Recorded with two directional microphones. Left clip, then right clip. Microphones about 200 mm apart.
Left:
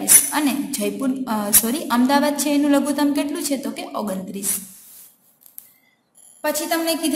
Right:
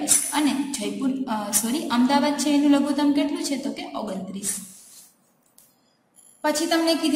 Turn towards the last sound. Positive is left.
turn(degrees=45)  # may be behind; listen again after turning